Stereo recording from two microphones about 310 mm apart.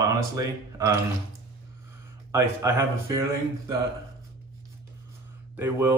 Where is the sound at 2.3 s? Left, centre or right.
Centre.